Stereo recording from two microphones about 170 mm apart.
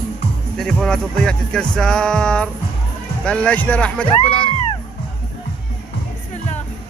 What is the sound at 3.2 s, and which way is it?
Speech, 5° left (ahead or behind).